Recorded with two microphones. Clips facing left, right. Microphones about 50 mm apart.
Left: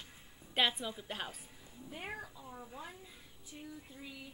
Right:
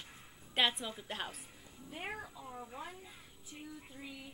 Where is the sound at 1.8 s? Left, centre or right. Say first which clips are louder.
Right 1 dB; centre.